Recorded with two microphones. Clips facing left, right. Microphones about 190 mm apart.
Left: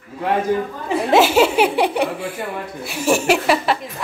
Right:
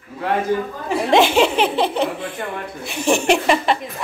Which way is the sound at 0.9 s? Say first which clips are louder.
Left 1 dB; 5° left (ahead or behind).